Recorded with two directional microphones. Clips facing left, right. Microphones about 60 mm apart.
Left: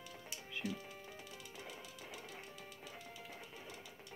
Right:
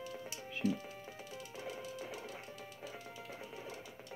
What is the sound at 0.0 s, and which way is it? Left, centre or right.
Music, right.